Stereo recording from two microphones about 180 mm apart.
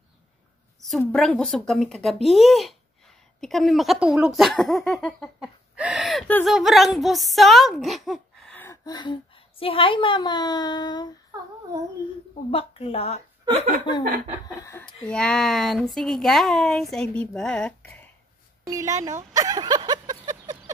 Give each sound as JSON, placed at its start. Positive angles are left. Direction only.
{"t": 0.8, "sound": "a woman's voice", "side_deg": 0}
{"t": 8.5, "sound": "a woman's voice", "side_deg": 15}
{"t": 12.4, "sound": "a woman's voice", "side_deg": 30}
{"t": 14.6, "sound": "a woman's voice", "side_deg": 15}
{"t": 18.7, "sound": "speech", "side_deg": -15}
{"t": 19.3, "sound": "a sound", "side_deg": -20}